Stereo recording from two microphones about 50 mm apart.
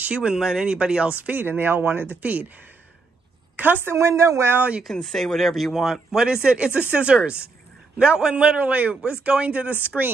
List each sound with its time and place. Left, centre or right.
0.0 s a man's voice: right
1.2 s speech: right
3.5 s a woman's voice: right
3.8 s a woman's voice: right
5.0 s speech: centre
6.2 s a man's voice: centre
9.7 s speech: right